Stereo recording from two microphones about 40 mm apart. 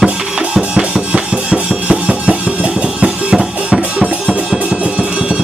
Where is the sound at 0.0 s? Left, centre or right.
Right.